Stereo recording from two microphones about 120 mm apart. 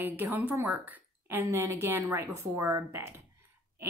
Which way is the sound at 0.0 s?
15° right (ahead or behind).